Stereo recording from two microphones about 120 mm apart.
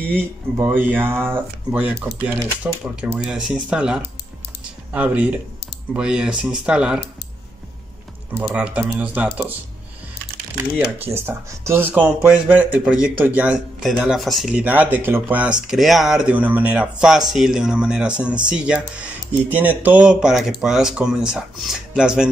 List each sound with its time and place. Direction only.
0.1 s speech: 15° right (ahead or behind)
8.4 s speech: 10° right (ahead or behind)
10.6 s speech: 20° right (ahead or behind); by 14.5 s centre (ahead or behind)
14.5 s speech: 10° right (ahead or behind)